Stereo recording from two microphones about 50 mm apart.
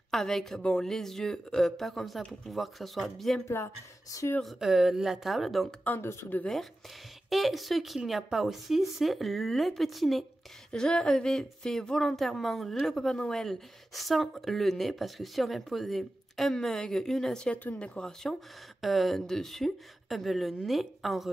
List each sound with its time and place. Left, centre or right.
0.1 s a woman's voice: centre
0.6 s speech: centre
0.8 s a woman's voice: centre
3.4 s speech: left
4.6 s a woman's voice: centre
5.9 s speech: left
7.2 s a woman's voice: centre
10.7 s a woman's voice: centre
18.8 s a woman's voice: centre